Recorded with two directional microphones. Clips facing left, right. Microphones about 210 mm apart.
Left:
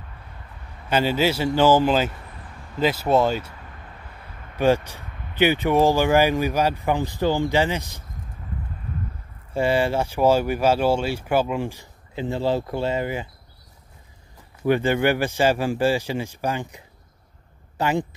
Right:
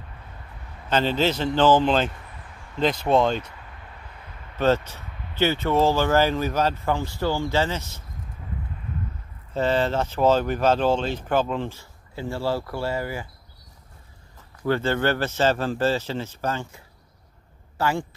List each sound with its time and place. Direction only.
0.8 s speech: 10° left (ahead or behind)
4.6 s speech: 10° left (ahead or behind)
9.5 s speech: 10° left (ahead or behind)
14.6 s speech: 15° left (ahead or behind)